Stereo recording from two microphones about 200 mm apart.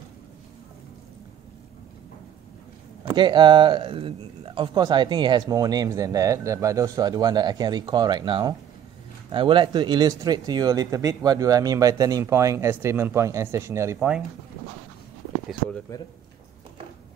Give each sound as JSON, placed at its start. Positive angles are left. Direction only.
{"t": 3.2, "sound": "speech", "side_deg": -20}
{"t": 15.9, "sound": "speech", "side_deg": 15}